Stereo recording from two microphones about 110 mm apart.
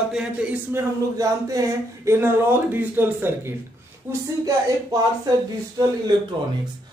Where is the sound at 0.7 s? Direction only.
30° right (ahead or behind).